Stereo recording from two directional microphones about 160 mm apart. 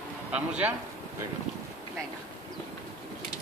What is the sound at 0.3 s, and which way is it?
Speech, 10° right (ahead or behind).